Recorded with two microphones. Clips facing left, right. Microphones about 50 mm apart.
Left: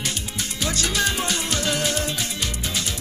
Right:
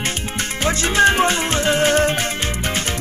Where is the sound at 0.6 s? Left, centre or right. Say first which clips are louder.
Right 9 dB; right.